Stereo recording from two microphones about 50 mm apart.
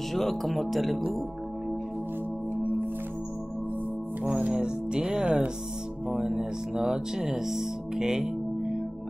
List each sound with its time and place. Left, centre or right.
0.1 s speech: centre
4.5 s speech: centre